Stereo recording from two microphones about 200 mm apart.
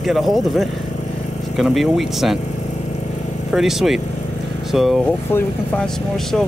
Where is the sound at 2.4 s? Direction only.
35° left (ahead or behind).